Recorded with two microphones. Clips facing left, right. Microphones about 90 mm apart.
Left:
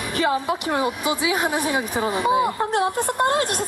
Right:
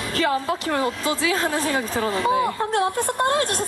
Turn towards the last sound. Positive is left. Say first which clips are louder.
# left 1 dB
turn(degrees=20)  # may be behind; listen again after turning